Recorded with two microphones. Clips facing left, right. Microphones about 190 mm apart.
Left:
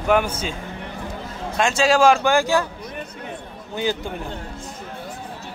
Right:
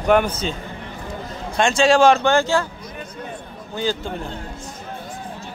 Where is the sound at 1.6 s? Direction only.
5° left (ahead or behind).